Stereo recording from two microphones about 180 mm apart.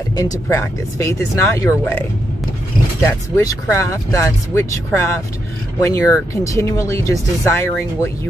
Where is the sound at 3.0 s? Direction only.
15° left (ahead or behind).